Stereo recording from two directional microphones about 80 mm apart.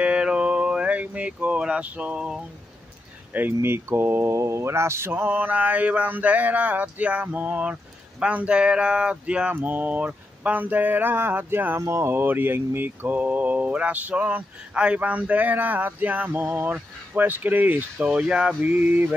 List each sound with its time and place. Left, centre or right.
0.0 s a sound: centre
3.3 s speech: right
17.9 s speech: centre